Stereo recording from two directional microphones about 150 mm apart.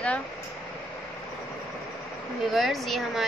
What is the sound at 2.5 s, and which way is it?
Speech, centre (ahead or behind).